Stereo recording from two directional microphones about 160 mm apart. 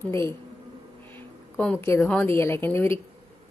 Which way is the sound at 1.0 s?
10° left (ahead or behind).